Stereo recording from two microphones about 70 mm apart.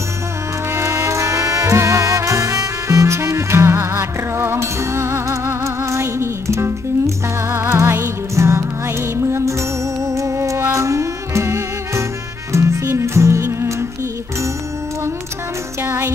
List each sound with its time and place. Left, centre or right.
0.7 s music: right
15.8 s music: right